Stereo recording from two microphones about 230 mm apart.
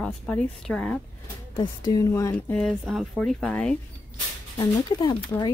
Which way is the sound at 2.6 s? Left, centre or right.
Centre.